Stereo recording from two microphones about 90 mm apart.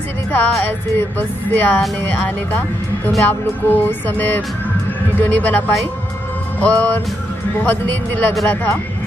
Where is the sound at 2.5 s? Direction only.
20° left (ahead or behind).